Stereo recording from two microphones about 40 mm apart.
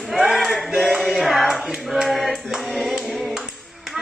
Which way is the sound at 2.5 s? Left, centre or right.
Centre.